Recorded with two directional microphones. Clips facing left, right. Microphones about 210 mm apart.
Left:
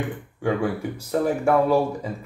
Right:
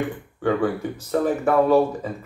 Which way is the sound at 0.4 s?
10° left (ahead or behind).